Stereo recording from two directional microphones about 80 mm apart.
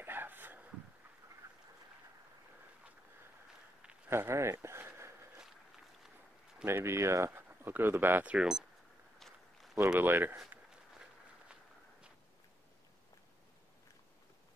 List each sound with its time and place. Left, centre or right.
0.0 s a sound: right
4.1 s speech: right
6.6 s speech: right; by 8.6 s centre
9.9 s speech: right
10.7 s walk: centre